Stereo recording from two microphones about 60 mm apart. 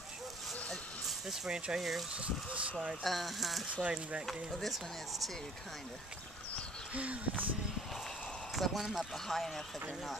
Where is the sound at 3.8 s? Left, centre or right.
Right.